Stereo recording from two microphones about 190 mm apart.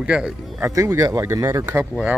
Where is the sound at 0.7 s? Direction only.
15° right (ahead or behind).